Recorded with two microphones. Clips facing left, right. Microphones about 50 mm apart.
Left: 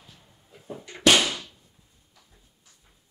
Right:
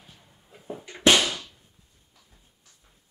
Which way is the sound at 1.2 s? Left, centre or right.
Centre.